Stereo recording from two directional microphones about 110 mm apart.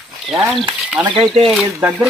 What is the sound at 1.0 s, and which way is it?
Speech, 55° right (ahead or behind).